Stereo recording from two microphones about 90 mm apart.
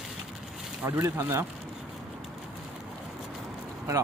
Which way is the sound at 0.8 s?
30° right (ahead or behind).